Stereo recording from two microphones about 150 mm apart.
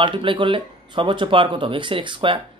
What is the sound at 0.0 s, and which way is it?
Speech, 35° right (ahead or behind).